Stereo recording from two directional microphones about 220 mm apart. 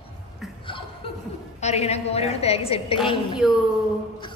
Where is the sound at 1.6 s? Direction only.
30° left (ahead or behind).